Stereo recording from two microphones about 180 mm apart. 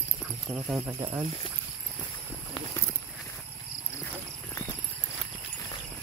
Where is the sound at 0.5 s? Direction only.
10° right (ahead or behind).